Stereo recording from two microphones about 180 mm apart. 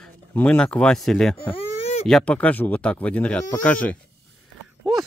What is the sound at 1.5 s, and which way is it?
Baby cry, 35° left (ahead or behind).